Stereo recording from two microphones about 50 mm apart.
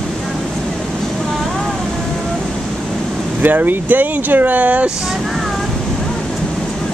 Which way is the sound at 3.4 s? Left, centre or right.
Right.